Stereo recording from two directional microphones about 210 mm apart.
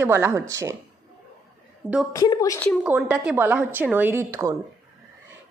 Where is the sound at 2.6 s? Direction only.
5° right (ahead or behind).